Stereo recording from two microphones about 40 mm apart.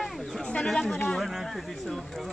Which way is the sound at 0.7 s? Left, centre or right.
Centre.